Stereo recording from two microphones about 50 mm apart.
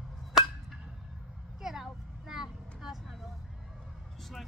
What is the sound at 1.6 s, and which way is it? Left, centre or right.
Vehicle, centre.